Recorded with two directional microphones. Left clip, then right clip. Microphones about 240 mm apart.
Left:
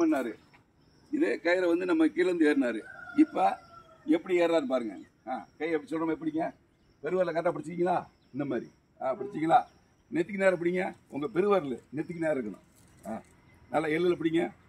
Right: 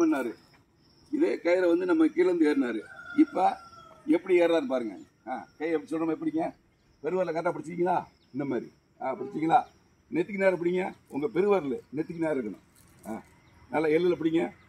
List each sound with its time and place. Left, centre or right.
1.1 s a man's voice: centre
13.7 s speech: centre